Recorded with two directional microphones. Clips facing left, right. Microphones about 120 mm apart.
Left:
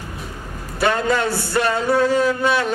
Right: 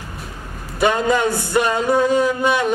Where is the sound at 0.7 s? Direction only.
15° right (ahead or behind).